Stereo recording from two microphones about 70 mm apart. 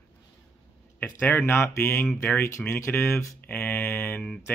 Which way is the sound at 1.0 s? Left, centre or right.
Left.